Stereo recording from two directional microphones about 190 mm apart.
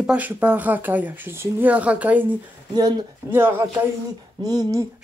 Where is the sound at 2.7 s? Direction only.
20° right (ahead or behind).